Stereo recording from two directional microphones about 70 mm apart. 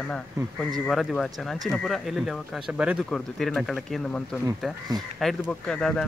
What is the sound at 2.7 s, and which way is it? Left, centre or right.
Speech, centre.